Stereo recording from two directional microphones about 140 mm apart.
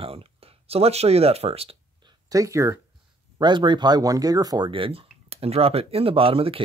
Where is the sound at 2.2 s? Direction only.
25° right (ahead or behind).